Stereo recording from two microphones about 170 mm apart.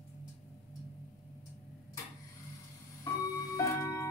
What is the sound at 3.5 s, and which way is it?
Music, 15° left (ahead or behind).